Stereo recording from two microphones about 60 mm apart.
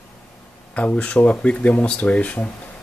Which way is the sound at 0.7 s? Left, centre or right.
Left.